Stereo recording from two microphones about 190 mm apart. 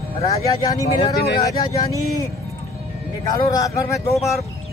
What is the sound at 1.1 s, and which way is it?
Speech, 55° left (ahead or behind).